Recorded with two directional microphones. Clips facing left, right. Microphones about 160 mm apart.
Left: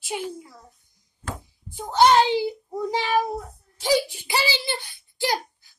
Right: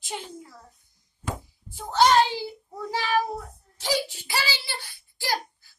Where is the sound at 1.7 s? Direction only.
15° left (ahead or behind).